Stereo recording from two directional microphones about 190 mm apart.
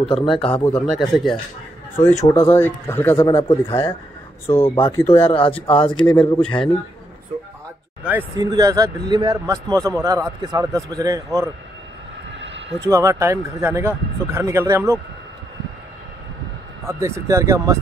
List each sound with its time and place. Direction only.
0.1 s speech: 25° left (ahead or behind)
0.7 s speech: 5° left (ahead or behind)
2.0 s speech: 10° left (ahead or behind)
3.2 s speech: 25° left (ahead or behind)
4.5 s speech: 15° left (ahead or behind)
5.2 s speech: 30° left (ahead or behind)
5.9 s speech: 5° left (ahead or behind)
8.0 s a man's voice: 10° right (ahead or behind)
12.4 s a sound: 70° right (ahead or behind)
12.8 s a man's voice: 15° right (ahead or behind)
16.8 s a man's voice: 15° right (ahead or behind)